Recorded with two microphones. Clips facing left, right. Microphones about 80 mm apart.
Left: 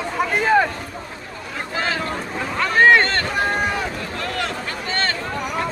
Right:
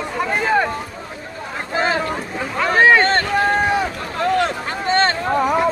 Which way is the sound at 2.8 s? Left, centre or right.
Centre.